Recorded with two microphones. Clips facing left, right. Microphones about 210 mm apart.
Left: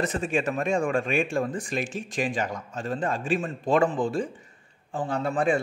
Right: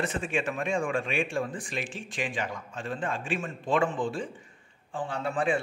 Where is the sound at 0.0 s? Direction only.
40° left (ahead or behind).